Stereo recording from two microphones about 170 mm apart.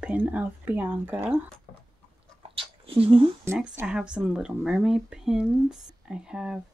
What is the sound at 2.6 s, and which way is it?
Speech, 35° right (ahead or behind).